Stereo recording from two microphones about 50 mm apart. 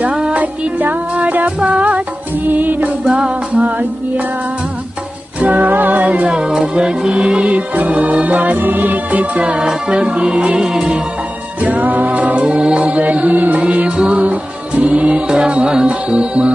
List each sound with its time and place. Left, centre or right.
0.1 s music: centre
0.4 s music: right
3.1 s music: right
5.4 s music: right
6.2 s music: centre
9.6 s music: centre
11.6 s music: right